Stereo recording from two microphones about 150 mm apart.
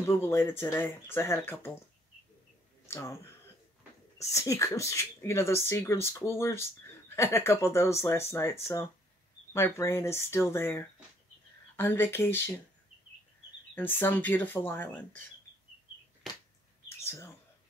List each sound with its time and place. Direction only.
0.0 s speech: 15° left (ahead or behind)
2.9 s speech: 15° left (ahead or behind)
4.2 s speech: 20° left (ahead or behind)
13.7 s speech: 15° left (ahead or behind)
16.2 s a sound: centre (ahead or behind)
17.0 s bird: 20° left (ahead or behind)